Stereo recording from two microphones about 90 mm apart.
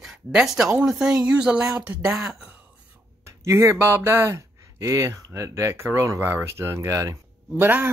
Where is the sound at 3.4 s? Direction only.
30° right (ahead or behind).